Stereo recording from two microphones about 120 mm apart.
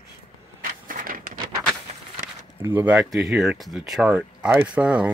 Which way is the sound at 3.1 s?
Centre (ahead or behind).